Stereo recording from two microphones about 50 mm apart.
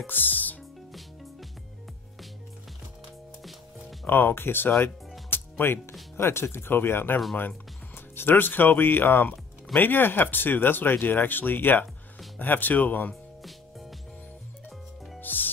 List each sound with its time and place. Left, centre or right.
0.0 s speech: left
4.0 s speech: left
5.3 s music: left
6.1 s speech: left
13.1 s music: centre
15.1 s music: left